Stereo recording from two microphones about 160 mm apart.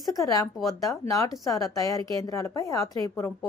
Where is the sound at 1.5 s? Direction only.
20° left (ahead or behind).